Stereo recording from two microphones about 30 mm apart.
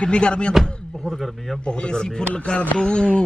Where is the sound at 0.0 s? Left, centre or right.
Left.